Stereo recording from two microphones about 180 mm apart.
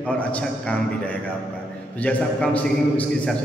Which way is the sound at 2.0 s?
5° left (ahead or behind).